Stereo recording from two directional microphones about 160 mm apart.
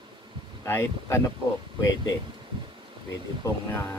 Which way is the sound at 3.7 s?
15° left (ahead or behind).